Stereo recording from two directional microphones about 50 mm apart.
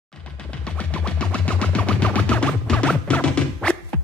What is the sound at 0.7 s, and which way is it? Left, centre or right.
Music, left.